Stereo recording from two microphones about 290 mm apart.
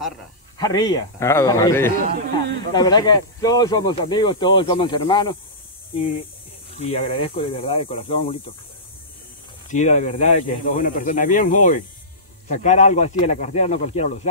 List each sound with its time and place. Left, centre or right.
0.6 s speech: centre
2.0 s a sound: right
2.7 s speech: centre
6.8 s speech: left
9.7 s speech: left